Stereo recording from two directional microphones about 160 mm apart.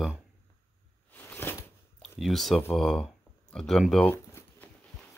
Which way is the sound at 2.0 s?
Centre (ahead or behind).